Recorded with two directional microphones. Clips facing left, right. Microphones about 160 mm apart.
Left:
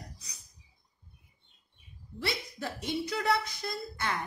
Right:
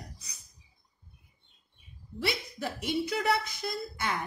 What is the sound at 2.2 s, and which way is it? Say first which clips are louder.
Speech: right 2 dB; 15° right (ahead or behind).